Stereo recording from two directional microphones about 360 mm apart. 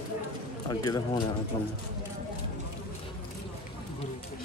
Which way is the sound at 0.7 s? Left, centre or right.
Centre.